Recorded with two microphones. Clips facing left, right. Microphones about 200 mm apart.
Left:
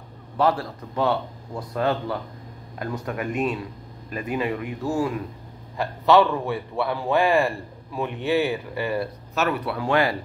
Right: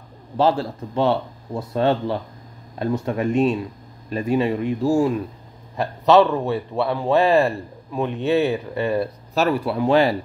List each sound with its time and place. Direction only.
0.4 s a man's voice: 25° right (ahead or behind)